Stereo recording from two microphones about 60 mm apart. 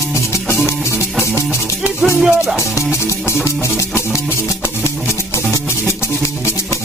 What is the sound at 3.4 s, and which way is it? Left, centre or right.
Music, left.